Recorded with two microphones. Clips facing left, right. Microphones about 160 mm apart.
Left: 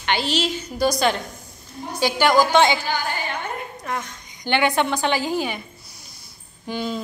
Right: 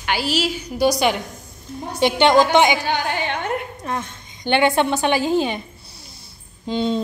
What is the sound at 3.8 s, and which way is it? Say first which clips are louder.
A woman's voice: right 2 dB; 20° right (ahead or behind).